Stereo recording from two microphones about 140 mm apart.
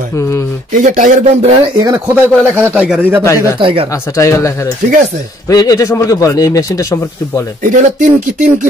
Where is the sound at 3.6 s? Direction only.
40° right (ahead or behind).